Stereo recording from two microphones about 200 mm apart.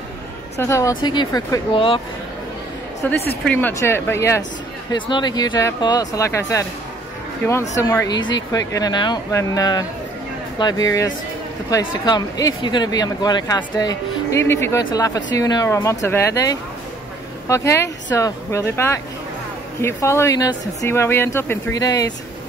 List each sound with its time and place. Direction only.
0.6 s speech: 15° left (ahead or behind)
3.0 s speech: 10° left (ahead or behind)
7.7 s speech: 15° left (ahead or behind)